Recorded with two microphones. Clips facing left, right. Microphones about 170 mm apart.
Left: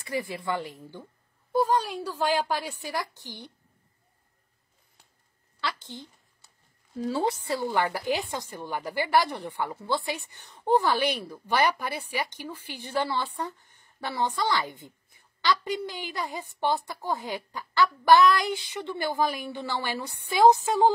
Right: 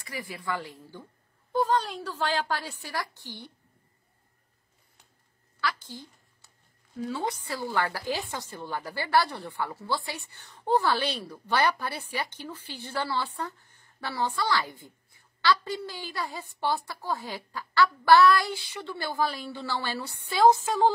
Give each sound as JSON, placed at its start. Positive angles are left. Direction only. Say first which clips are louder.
{"t": 0.0, "sound": "a woman's voice", "louder": "left 6 dB", "side_deg": 25}
{"t": 1.5, "sound": "a woman's voice", "louder": "left 1 dB", "side_deg": 10}
{"t": 5.6, "sound": "a woman's voice", "louder": "right 1 dB", "side_deg": 25}
{"t": 7.1, "sound": "a woman's voice", "louder": "left 5 dB", "side_deg": 30}